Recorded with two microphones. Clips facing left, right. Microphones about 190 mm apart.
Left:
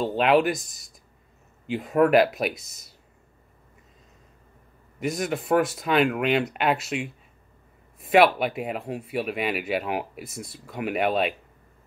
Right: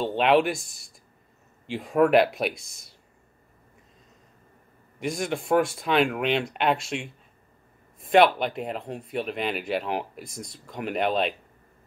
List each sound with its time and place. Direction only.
0.0 s speech: centre (ahead or behind)
4.9 s speech: centre (ahead or behind)